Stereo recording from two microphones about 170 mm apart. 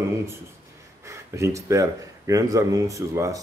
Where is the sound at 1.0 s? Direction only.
20° right (ahead or behind).